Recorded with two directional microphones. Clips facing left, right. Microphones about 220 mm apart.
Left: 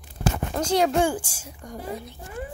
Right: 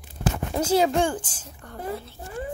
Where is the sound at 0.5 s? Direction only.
5° right (ahead or behind).